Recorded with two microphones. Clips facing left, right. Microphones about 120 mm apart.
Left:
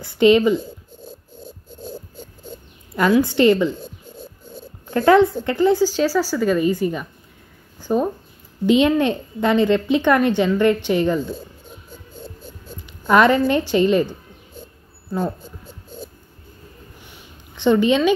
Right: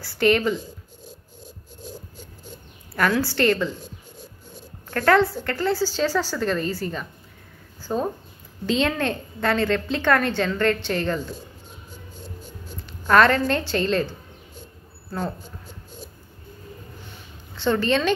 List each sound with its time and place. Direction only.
0.0 s speech: 20° left (ahead or behind)
3.2 s a woman's voice: 20° left (ahead or behind)
4.8 s a woman's voice: 20° left (ahead or behind)
13.1 s a woman's voice: 15° left (ahead or behind)
17.0 s a sound: 15° left (ahead or behind)